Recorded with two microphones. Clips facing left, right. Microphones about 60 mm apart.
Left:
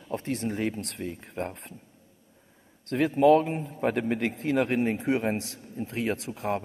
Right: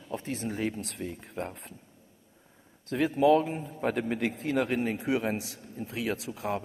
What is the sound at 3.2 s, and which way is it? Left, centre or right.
A man's voice, left.